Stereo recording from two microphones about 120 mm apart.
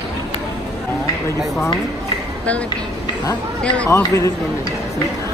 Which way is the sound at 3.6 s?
10° left (ahead or behind).